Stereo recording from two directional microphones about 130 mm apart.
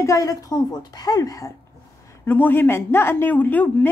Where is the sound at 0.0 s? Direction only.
25° left (ahead or behind).